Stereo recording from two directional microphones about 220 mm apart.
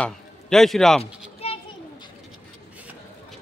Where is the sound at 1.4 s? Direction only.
25° left (ahead or behind).